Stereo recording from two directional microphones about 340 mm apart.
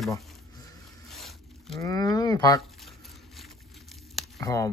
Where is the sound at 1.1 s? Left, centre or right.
Centre.